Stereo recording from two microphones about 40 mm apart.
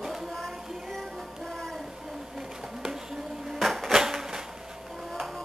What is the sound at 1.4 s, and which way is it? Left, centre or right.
Music, centre.